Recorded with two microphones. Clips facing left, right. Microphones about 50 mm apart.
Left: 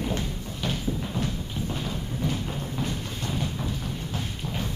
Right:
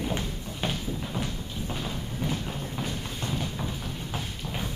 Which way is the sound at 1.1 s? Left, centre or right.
Centre.